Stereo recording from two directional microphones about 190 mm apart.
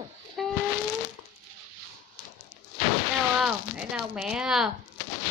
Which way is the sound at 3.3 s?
5° right (ahead or behind).